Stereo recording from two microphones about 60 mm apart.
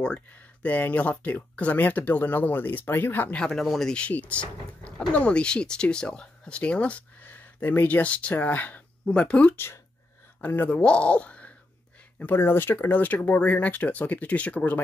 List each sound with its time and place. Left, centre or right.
0.0 s speech: left
3.5 s speech: centre
4.1 s speech: left
7.2 s a sound: left
8.0 s speech: left
9.0 s speech: centre
10.4 s speech: left
10.8 s speech: centre
12.2 s speech: left